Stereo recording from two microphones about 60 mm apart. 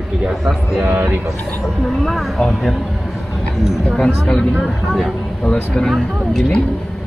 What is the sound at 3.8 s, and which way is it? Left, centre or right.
Speech, centre.